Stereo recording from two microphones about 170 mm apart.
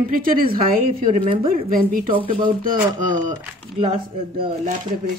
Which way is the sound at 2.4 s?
50° right (ahead or behind).